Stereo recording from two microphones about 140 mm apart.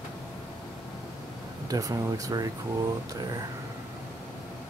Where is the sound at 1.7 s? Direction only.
25° right (ahead or behind).